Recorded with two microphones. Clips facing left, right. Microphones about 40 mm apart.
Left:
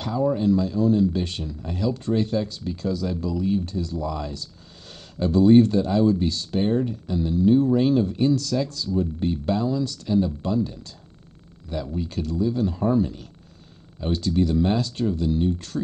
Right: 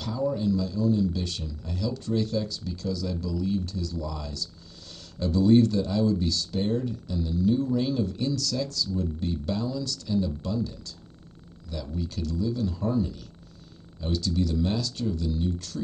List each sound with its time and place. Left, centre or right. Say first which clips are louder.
0.0 s speech: left 5 dB; left